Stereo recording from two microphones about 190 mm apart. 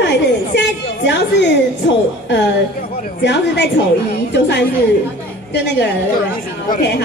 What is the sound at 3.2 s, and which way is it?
A woman's voice, 65° left (ahead or behind).